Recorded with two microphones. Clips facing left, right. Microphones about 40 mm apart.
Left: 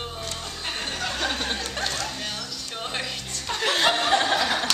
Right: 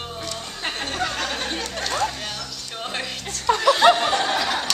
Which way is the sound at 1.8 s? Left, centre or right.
Right.